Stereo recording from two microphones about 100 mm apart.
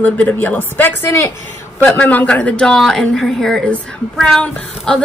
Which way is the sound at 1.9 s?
15° left (ahead or behind).